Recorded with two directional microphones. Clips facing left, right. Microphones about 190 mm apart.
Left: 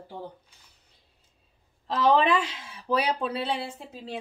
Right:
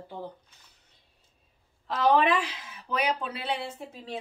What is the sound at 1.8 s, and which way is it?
A woman's voice, 25° left (ahead or behind).